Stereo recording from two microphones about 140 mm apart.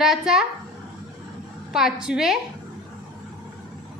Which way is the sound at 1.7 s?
5° right (ahead or behind).